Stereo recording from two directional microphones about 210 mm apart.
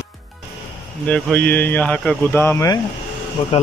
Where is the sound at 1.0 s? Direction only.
5° left (ahead or behind).